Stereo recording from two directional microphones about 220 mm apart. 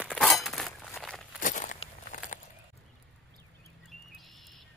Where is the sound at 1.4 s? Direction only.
35° left (ahead or behind).